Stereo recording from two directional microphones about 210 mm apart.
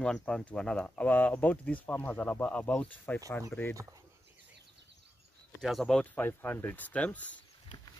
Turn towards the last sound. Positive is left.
turn(degrees=5)  # may be behind; listen again after turning